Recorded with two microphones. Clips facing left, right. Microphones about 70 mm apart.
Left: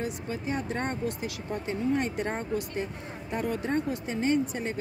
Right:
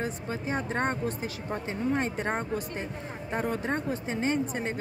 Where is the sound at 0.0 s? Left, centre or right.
Right.